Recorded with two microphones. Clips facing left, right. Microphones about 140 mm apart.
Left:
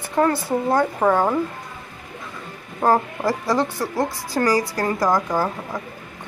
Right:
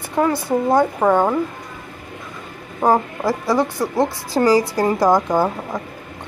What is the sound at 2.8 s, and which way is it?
A woman's voice, 15° right (ahead or behind).